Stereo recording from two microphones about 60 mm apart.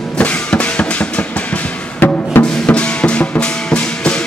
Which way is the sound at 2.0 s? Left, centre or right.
Left.